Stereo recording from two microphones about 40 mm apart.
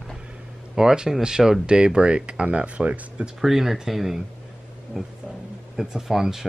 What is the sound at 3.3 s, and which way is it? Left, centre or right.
Speech, centre.